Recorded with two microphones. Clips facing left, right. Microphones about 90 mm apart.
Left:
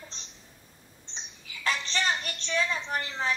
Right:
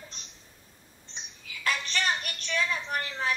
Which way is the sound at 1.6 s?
30° left (ahead or behind).